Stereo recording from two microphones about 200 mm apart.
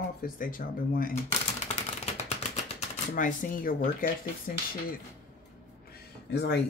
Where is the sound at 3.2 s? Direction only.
45° left (ahead or behind).